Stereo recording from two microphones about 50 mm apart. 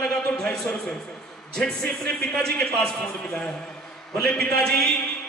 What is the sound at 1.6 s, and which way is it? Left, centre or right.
A man's voice, centre.